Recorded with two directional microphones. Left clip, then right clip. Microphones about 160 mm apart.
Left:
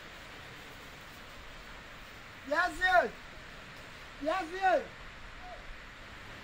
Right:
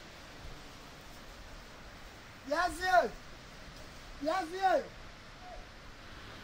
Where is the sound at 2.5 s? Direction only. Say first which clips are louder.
Left 1 dB; 5° right (ahead or behind).